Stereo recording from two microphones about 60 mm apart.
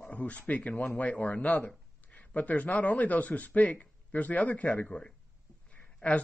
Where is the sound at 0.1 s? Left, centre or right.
Left.